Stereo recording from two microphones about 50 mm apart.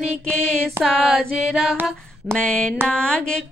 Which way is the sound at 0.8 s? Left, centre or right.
Centre.